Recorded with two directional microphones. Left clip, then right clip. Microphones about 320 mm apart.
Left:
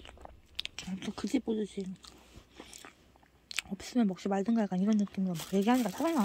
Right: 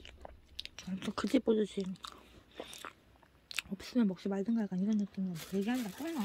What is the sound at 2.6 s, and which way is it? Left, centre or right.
Biting, centre.